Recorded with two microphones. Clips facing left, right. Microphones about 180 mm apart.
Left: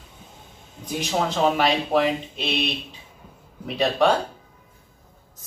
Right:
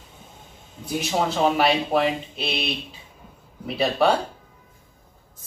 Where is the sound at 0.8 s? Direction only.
5° right (ahead or behind).